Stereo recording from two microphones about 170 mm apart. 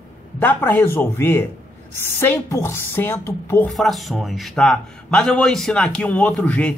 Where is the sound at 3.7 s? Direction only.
Centre (ahead or behind).